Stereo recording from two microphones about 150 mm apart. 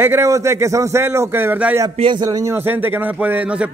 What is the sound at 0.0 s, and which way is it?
A man's voice, 15° right (ahead or behind).